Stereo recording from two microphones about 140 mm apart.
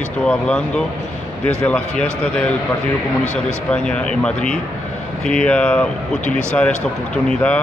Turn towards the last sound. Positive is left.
turn(degrees=10)  # may be behind; listen again after turning